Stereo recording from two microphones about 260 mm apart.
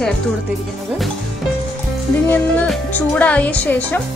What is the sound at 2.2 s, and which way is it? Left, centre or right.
A woman's voice, centre.